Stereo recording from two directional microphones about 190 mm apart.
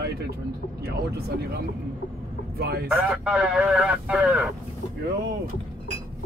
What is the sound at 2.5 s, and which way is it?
Speech, 55° right (ahead or behind).